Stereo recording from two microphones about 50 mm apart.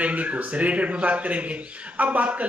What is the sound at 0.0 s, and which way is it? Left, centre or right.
A man's voice, right.